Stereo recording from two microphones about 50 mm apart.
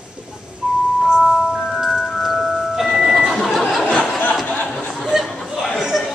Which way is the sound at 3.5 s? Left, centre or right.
Centre.